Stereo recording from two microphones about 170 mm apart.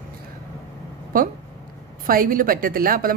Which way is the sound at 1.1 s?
55° right (ahead or behind).